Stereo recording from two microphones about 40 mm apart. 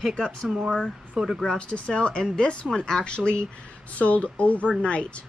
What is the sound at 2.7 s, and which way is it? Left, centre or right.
Speech, centre.